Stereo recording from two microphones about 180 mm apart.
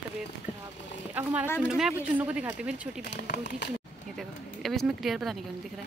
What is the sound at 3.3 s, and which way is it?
Speech, 70° left (ahead or behind).